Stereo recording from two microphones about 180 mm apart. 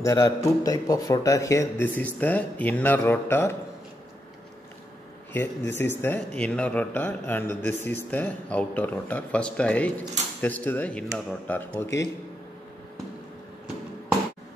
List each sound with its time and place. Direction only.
0.0 s a man's voice: 15° left (ahead or behind)
5.3 s a man's voice: 10° left (ahead or behind)